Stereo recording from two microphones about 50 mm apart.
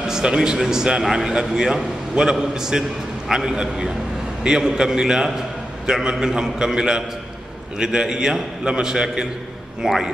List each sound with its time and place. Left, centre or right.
0.0 s a man's voice: centre